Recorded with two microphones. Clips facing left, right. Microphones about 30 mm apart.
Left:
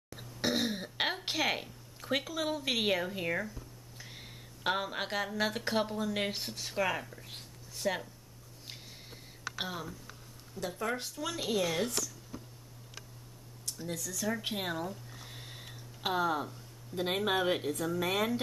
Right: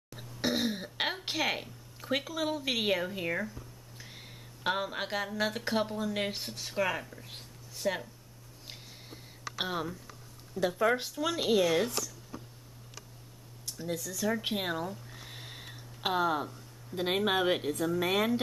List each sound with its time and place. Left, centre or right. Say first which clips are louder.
0.1 s cough: right 1 dB; centre
4.0 s speech: even; centre
8.6 s a sound: right 1 dB; centre
9.6 s speech: right 6 dB; right
13.7 s a sound: right 3 dB; centre
16.0 s speech: right 2 dB; centre